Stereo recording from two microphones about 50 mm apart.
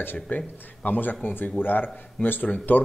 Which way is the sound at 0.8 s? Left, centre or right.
Left.